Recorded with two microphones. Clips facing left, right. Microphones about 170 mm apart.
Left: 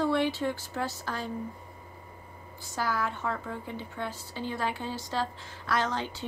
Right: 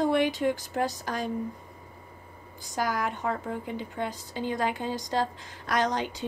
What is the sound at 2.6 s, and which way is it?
A woman's voice, 15° right (ahead or behind).